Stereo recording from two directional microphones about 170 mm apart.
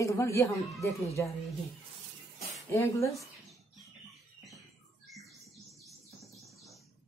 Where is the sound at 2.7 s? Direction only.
15° left (ahead or behind).